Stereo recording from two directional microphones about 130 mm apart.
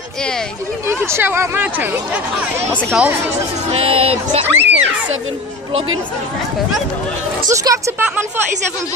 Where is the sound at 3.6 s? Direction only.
50° right (ahead or behind).